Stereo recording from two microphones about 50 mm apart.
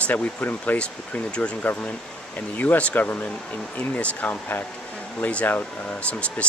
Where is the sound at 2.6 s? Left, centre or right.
Left.